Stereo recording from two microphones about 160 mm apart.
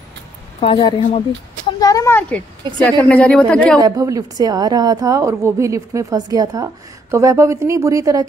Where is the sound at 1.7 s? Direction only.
20° left (ahead or behind); by 3.8 s 5° left (ahead or behind).